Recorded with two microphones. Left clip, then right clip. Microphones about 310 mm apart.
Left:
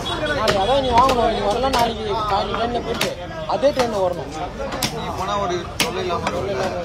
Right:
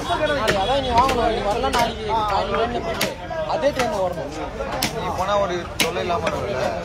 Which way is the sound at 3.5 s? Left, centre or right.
Centre.